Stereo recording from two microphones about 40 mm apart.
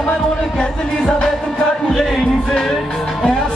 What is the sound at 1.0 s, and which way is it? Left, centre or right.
Music, left.